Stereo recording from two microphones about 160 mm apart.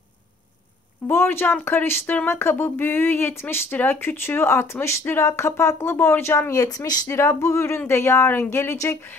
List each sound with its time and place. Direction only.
1.0 s speech: 15° left (ahead or behind)